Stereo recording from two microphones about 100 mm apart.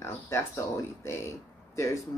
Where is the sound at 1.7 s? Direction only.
30° left (ahead or behind).